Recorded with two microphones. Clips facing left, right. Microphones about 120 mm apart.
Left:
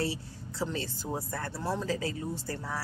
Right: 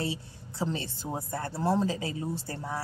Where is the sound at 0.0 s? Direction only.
20° right (ahead or behind).